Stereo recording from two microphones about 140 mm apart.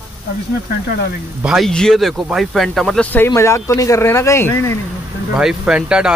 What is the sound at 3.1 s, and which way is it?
Speech, 15° left (ahead or behind).